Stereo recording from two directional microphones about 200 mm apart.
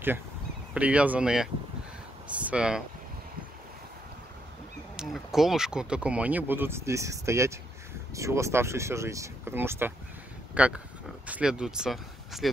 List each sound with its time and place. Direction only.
0.7 s speech: 5° right (ahead or behind)
4.9 s speech: centre (ahead or behind)